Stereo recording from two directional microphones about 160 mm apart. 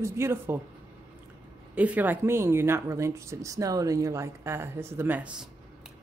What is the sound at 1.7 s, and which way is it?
Speech, 10° right (ahead or behind).